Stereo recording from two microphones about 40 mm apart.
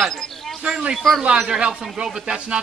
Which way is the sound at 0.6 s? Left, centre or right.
Right.